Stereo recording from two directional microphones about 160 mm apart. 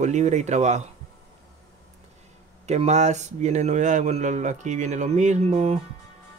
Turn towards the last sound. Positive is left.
turn(degrees=-40)  # may be behind; listen again after turning